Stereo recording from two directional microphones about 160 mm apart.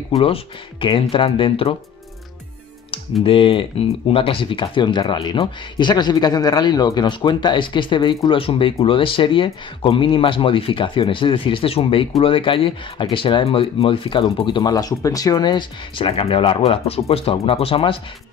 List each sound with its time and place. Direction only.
0.2 s speech: 35° left (ahead or behind)
2.9 s speech: 35° left (ahead or behind)